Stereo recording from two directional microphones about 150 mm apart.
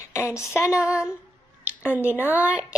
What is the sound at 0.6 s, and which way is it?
Speech, 5° right (ahead or behind).